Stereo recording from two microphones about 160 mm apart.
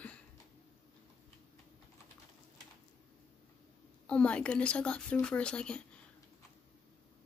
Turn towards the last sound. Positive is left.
turn(degrees=5)  # may be behind; listen again after turning